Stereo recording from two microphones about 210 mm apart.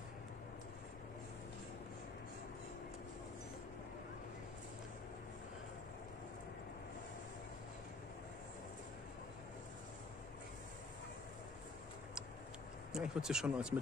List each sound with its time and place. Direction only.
12.9 s speech: 5° right (ahead or behind)